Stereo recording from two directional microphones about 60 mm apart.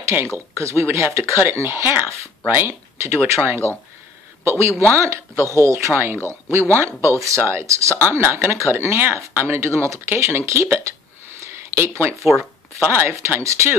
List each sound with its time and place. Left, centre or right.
0.6 s speech: right
3.0 s speech: right
7.2 s speech: right
8.0 s speech: right
11.4 s a sound: right
12.8 s speech: right